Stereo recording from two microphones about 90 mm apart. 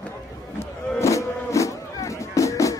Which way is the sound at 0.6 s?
35° left (ahead or behind).